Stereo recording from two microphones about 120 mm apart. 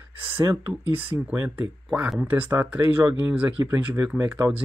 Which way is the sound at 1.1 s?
10° right (ahead or behind).